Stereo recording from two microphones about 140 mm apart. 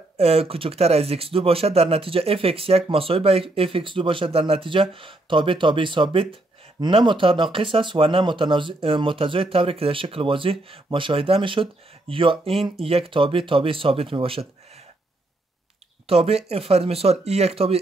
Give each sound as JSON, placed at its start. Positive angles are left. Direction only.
{"t": 0.2, "sound": "speech", "side_deg": -45}
{"t": 16.1, "sound": "speech", "side_deg": -45}